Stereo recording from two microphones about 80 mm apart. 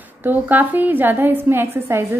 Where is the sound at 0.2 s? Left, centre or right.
Right.